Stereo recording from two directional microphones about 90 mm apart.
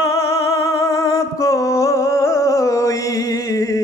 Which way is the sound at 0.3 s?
35° left (ahead or behind).